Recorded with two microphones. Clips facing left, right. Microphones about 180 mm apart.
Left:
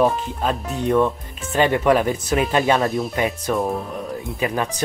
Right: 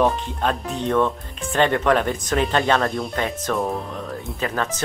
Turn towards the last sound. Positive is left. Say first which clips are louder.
# left 2 dB
turn(degrees=15)  # may be behind; listen again after turning